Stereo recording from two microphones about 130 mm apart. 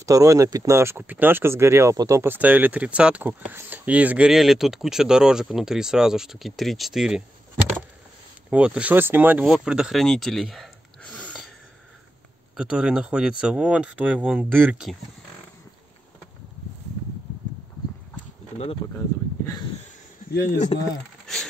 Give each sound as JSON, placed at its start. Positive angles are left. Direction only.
{"t": 0.0, "sound": "speech", "side_deg": -25}
{"t": 8.5, "sound": "speech", "side_deg": -10}
{"t": 9.4, "sound": "speech", "side_deg": -5}
{"t": 12.5, "sound": "speech", "side_deg": -5}
{"t": 18.9, "sound": "speech", "side_deg": 25}
{"t": 20.7, "sound": "speech", "side_deg": 45}